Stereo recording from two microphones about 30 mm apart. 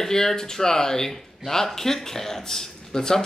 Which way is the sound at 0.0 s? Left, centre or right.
Centre.